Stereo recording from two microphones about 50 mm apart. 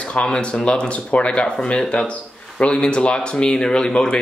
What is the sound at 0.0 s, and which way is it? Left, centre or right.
A man's voice, left.